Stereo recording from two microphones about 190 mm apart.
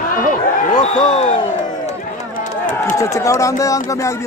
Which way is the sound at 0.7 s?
40° left (ahead or behind).